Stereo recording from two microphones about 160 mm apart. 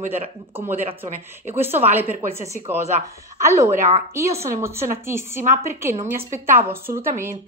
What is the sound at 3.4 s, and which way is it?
A woman's voice, 20° right (ahead or behind).